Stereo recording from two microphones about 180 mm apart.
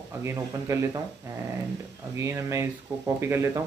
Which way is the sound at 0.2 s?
15° right (ahead or behind).